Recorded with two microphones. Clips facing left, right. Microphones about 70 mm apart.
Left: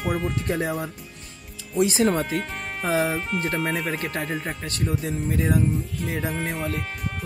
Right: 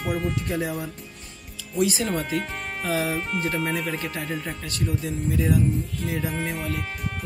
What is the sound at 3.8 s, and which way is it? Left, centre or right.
Speech, left.